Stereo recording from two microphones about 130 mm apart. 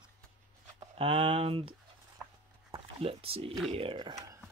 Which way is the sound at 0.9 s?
45° right (ahead or behind).